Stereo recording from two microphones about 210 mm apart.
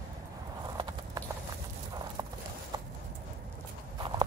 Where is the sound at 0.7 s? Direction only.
20° right (ahead or behind).